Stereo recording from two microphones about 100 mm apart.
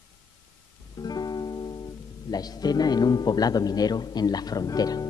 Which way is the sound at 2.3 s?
40° left (ahead or behind).